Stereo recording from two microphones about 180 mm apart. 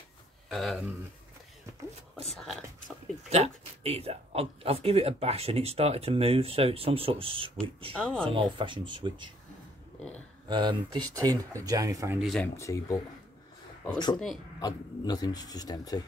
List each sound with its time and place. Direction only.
0.5 s speech: centre (ahead or behind)
2.3 s speech: centre (ahead or behind)
3.3 s speech: 35° right (ahead or behind)
7.9 s speech: 5° left (ahead or behind)
8.2 s speech: 25° right (ahead or behind)
10.5 s speech: 25° right (ahead or behind)
12.2 s speech: centre (ahead or behind)
12.5 s speech: 15° left (ahead or behind)
14.6 s speech: 20° left (ahead or behind)